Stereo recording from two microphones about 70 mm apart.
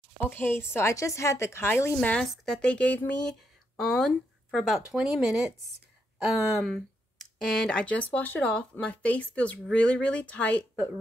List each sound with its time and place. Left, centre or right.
0.2 s a woman's voice: left
0.7 s a woman's voice: left
2.1 s a woman's voice: centre
4.8 s speech: centre; by 10.6 s left